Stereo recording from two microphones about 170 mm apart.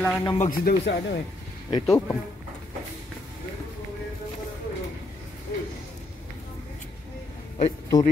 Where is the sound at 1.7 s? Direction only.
15° left (ahead or behind).